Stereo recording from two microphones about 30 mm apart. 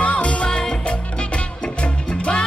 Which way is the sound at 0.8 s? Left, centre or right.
Left.